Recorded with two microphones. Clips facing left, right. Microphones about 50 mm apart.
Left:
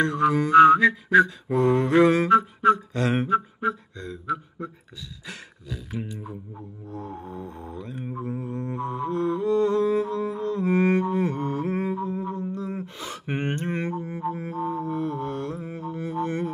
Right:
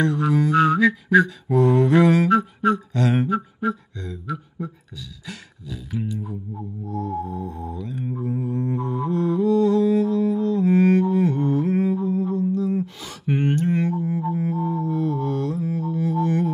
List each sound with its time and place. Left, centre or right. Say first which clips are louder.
0.0 s mantra: right 1 dB; left
3.3 s a sound: even; centre
5.7 s music: right 4 dB; left
6.9 s mantra: right 8 dB; centre
7.7 s mantra: right 4 dB; left; by 8.8 s centre
8.8 s music: even; centre
11.7 s a sound: right 6 dB; centre
12.8 s sigh: right 4 dB; left
14.3 s music: right 4 dB; centre